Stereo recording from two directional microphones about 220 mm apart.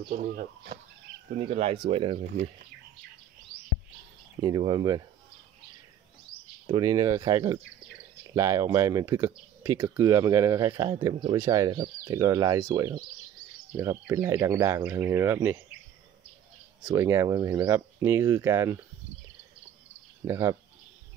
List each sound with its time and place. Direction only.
0.1 s speech: 40° right (ahead or behind)
1.4 s speech: 30° right (ahead or behind)
4.4 s speech: 20° right (ahead or behind)
6.7 s speech: 15° right (ahead or behind)
16.8 s speech: 15° right (ahead or behind)
20.2 s speech: 15° right (ahead or behind)